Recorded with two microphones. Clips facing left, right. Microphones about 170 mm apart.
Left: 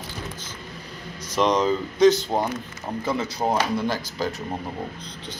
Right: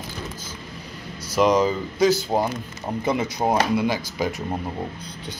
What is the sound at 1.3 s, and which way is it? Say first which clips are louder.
Speech: right 2 dB; 5° right (ahead or behind).